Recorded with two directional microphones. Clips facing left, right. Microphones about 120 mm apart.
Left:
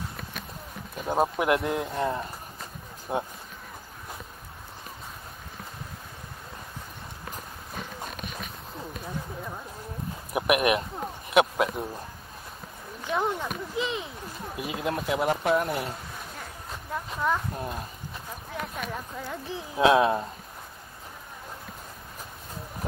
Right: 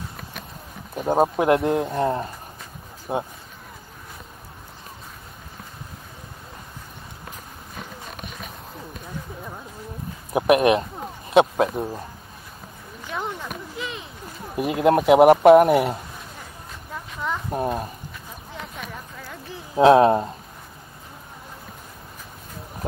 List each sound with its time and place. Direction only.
0.9 s speech: 30° right (ahead or behind)
10.3 s speech: 30° right (ahead or behind)
13.0 s speech: 15° left (ahead or behind)
14.6 s speech: 55° right (ahead or behind)
16.9 s a sound: 5° left (ahead or behind)
17.5 s speech: 55° right (ahead or behind)
19.8 s speech: 40° right (ahead or behind)